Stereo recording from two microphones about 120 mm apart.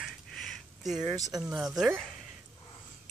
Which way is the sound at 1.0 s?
30° right (ahead or behind).